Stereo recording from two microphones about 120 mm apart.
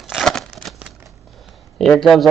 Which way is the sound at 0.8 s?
5° right (ahead or behind).